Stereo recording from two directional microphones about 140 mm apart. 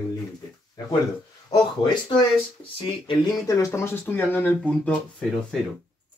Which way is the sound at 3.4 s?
20° left (ahead or behind).